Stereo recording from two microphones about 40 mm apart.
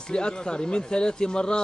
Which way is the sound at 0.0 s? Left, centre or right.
Left.